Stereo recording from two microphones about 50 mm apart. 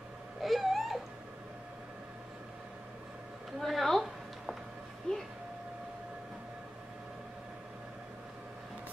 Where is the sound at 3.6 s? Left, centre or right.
Centre.